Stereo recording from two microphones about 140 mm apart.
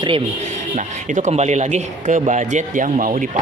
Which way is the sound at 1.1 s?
55° right (ahead or behind).